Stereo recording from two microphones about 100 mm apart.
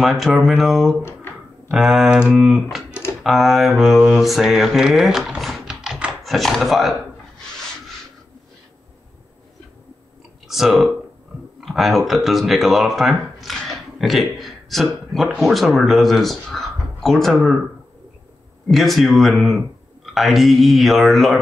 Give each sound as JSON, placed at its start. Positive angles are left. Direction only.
{"t": 0.0, "sound": "mantra", "side_deg": 0}
{"t": 2.9, "sound": "typing", "side_deg": 25}
{"t": 3.3, "sound": "mantra", "side_deg": 0}
{"t": 5.5, "sound": "typing", "side_deg": -5}
{"t": 6.2, "sound": "mantra", "side_deg": 0}
{"t": 10.5, "sound": "speech", "side_deg": -5}
{"t": 18.7, "sound": "mantra", "side_deg": 0}